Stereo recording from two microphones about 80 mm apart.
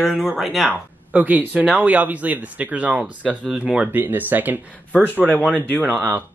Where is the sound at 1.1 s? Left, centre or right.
Right.